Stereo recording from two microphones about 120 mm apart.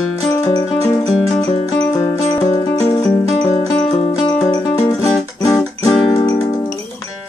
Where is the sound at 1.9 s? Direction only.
35° left (ahead or behind).